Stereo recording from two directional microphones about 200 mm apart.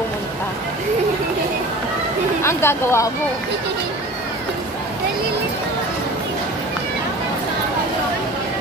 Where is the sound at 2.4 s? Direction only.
10° left (ahead or behind).